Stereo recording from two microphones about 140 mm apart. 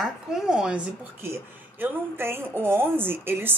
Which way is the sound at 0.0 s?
5° right (ahead or behind).